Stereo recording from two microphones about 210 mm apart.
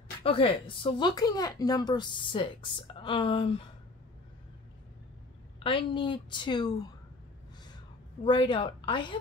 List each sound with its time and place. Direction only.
0.2 s speech: 25° left (ahead or behind)
5.6 s speech: 25° left (ahead or behind)
8.2 s speech: 20° left (ahead or behind)